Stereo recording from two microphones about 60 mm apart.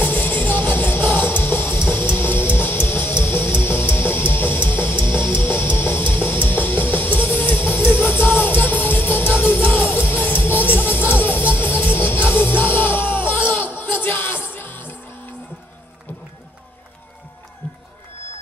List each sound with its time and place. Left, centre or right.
0.0 s music: left